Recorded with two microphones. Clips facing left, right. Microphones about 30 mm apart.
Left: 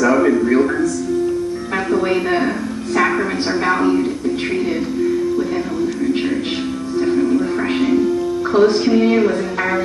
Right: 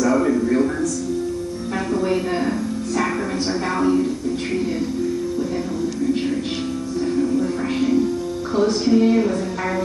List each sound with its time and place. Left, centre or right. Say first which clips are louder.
0.0 s a sound: left 4 dB; left
1.9 s speech: left 4 dB; left
3.6 s a man's voice: left 4 dB; left
7.1 s music: left 4 dB; left